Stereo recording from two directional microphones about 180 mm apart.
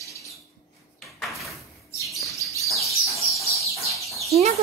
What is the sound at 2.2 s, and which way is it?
Chirp, centre (ahead or behind).